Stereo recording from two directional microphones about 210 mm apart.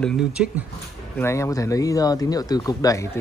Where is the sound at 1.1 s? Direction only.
15° left (ahead or behind).